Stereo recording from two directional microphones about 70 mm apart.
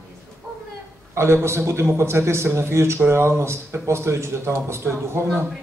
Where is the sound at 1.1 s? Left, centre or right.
Right.